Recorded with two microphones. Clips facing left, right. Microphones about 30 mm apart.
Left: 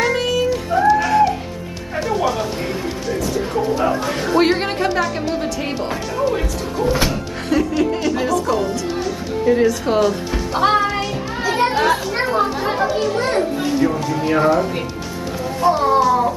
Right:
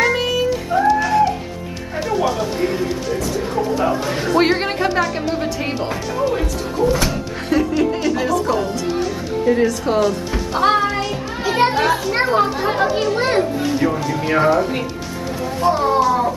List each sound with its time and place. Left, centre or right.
0.0 s child singing: centre
2.0 s music: centre
5.9 s speech: centre
7.4 s chuckle: centre
8.5 s music: centre
11.4 s children playing: centre
11.7 s children playing: centre
13.1 s children playing: right
13.7 s music: centre
14.2 s speech: centre
15.6 s speech: centre